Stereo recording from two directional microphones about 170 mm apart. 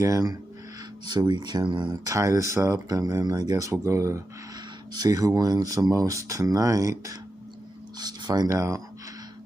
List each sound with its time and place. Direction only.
0.0 s speech: 20° right (ahead or behind)